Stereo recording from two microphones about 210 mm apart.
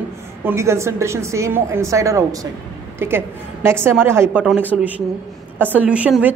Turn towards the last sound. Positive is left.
turn(degrees=-5)  # may be behind; listen again after turning